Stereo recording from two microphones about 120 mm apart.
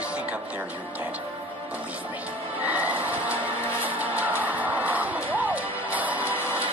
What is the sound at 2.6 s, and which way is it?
Music, 15° right (ahead or behind).